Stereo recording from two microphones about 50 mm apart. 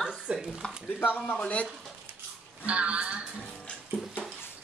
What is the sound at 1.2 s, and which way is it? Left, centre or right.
Speech, left.